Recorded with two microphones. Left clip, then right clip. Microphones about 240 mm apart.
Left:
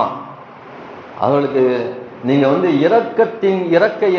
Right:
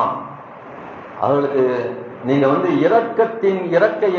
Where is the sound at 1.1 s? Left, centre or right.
Left.